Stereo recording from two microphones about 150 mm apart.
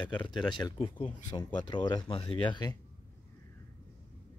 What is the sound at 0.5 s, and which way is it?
Speech, 25° left (ahead or behind).